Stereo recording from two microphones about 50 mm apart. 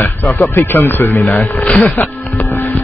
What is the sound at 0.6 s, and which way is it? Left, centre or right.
Speech, left.